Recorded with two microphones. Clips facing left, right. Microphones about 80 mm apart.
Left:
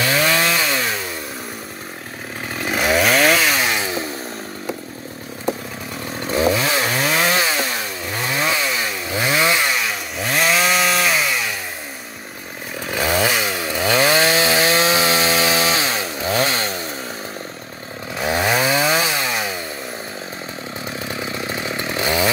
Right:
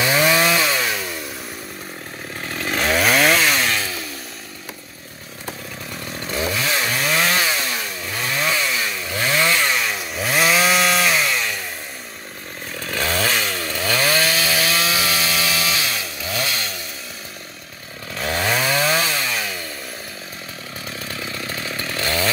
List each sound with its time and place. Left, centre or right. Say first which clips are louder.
0.0 s chainsaw: right 1 dB; centre
2.5 s chainsaw: left 2 dB; centre
3.6 s chainsaw: left 2 dB; centre
6.1 s chainsaw: left 6 dB; left
9.7 s chainsaw: even; centre
12.7 s chainsaw: left 3 dB; centre; by 16.8 s left
18.1 s chainsaw: left 3 dB; centre
20.8 s chainsaw: left 3 dB; left